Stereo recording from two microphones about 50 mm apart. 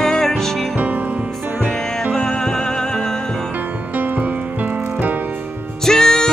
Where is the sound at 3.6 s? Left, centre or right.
Right.